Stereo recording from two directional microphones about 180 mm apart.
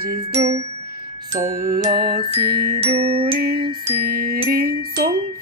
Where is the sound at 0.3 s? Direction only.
40° right (ahead or behind).